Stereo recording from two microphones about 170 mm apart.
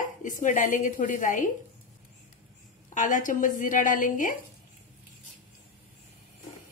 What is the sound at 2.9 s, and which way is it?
Speech, 50° left (ahead or behind).